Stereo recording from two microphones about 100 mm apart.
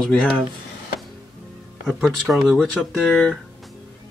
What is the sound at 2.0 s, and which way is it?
Speech, centre (ahead or behind).